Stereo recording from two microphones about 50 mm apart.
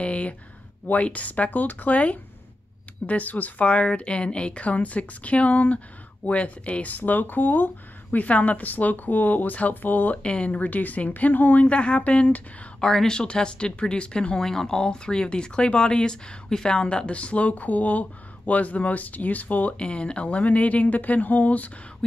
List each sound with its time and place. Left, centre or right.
0.0 s a sound: left
1.0 s speech: left
10.2 s speech: left
11.6 s speech: left
12.8 s speech: centre; by 19.7 s left
19.8 s speech: left